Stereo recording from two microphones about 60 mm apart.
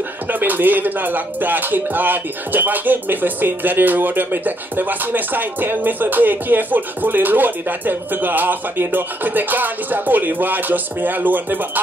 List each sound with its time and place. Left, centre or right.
0.3 s speech: right